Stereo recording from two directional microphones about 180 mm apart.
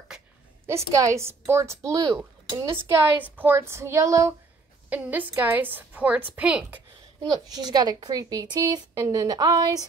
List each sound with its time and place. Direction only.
0.7 s a woman's voice: 15° right (ahead or behind)
7.4 s a woman's voice: 20° right (ahead or behind)